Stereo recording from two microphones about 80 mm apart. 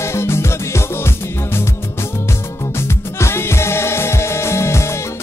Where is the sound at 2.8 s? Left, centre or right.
Left.